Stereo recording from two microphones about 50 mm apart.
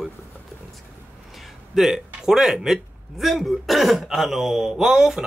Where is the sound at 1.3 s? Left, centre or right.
Centre.